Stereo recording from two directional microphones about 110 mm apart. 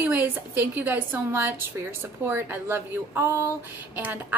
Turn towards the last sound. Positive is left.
turn(degrees=-15)  # may be behind; listen again after turning